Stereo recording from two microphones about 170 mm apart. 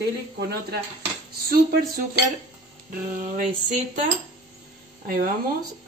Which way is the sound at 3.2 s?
45° right (ahead or behind).